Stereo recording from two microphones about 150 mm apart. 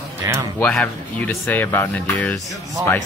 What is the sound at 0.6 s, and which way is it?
Speech, 10° left (ahead or behind).